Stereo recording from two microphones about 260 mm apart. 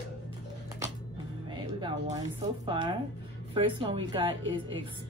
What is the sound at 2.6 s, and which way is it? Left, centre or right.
A woman's voice, centre.